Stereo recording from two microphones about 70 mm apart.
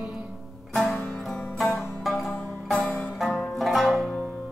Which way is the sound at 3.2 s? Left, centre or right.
Centre.